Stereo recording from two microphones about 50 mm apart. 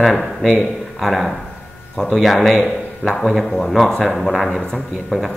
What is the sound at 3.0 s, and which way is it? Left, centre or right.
Speech, left.